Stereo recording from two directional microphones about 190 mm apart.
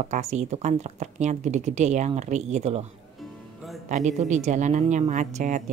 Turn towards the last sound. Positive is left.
turn(degrees=-40)  # may be behind; listen again after turning